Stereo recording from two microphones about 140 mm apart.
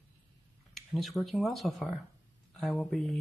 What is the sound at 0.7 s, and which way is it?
Speech, centre (ahead or behind).